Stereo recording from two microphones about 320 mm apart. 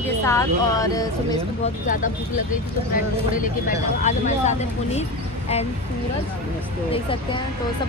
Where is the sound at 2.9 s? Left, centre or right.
Left.